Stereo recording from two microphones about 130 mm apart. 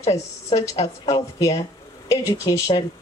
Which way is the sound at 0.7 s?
50° left (ahead or behind).